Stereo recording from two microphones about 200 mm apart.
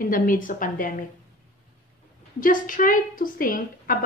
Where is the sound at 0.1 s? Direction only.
40° left (ahead or behind).